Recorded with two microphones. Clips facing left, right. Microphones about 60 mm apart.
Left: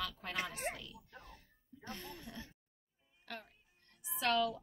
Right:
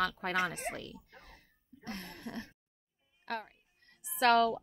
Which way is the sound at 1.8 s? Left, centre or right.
Right.